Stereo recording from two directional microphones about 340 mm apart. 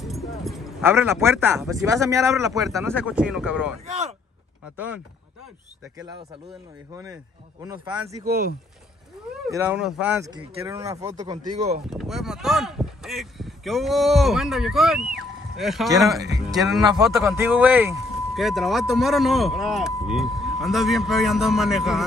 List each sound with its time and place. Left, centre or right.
0.0 s speech: centre
4.7 s speech: centre
6.9 s speech: centre
8.3 s speech: right
9.5 s speech: centre
11.9 s speech: centre